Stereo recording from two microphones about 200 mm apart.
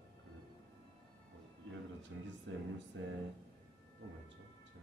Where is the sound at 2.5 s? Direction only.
65° right (ahead or behind).